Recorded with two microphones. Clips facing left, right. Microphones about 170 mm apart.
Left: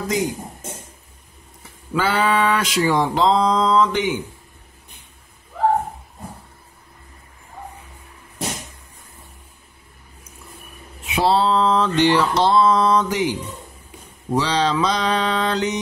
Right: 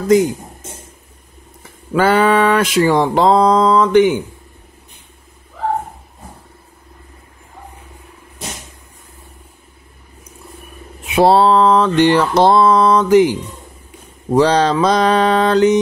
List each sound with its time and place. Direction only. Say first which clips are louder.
2.0 s mantra: right 7 dB; 55° right (ahead or behind)
11.1 s mantra: right 7 dB; 55° right (ahead or behind)
14.3 s mantra: right 7 dB; 50° right (ahead or behind)